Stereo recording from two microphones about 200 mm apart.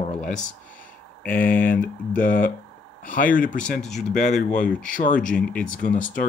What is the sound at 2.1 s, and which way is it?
Speech, 45° left (ahead or behind).